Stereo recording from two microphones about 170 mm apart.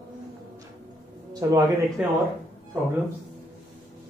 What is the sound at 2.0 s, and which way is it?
Speech, 5° right (ahead or behind).